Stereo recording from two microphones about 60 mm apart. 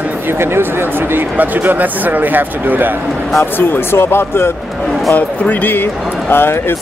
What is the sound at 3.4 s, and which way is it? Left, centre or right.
Speech, left.